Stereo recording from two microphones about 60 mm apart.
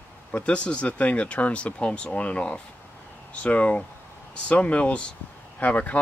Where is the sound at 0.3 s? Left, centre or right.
Centre.